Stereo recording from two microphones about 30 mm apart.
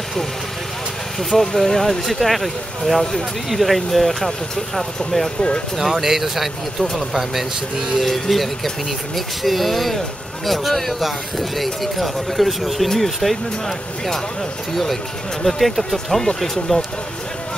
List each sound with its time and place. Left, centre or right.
1.3 s speech: centre
3.0 s speech: centre
3.4 s speech: centre
5.8 s speech: centre
8.0 s speech: centre